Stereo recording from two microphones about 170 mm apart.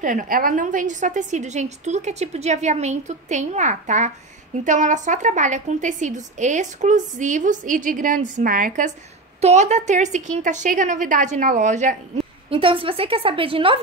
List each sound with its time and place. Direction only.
0.0 s a woman's voice: 50° right (ahead or behind)
9.4 s a woman's voice: 40° right (ahead or behind)
12.4 s a woman's voice: 30° right (ahead or behind)